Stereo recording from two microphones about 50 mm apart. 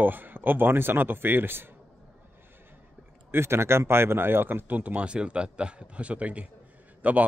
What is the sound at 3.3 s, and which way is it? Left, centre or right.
Speech, right.